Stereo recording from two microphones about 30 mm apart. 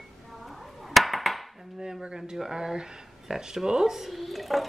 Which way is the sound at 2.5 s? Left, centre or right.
Right.